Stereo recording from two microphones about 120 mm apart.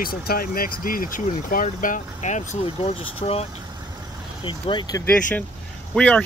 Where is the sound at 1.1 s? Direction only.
90° left.